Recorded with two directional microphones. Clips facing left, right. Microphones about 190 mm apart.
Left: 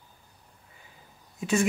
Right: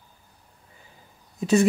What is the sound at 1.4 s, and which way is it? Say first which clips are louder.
Speech: right 6 dB; 35° right (ahead or behind).